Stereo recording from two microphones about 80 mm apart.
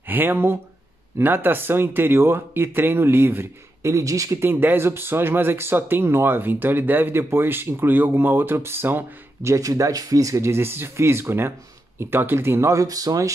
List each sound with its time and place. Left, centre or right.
0.1 s speech: right
3.9 s speech: right
4.4 s speech: right
9.5 s speech: right
12.7 s speech: right